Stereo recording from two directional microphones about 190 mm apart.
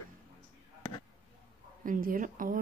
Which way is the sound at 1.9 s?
45° right (ahead or behind).